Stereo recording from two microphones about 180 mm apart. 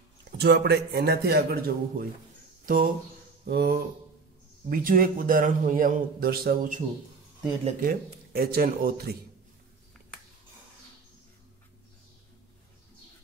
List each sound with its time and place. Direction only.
0.4 s a man's voice: 65° right (ahead or behind)
7.8 s a man's voice: 60° right (ahead or behind)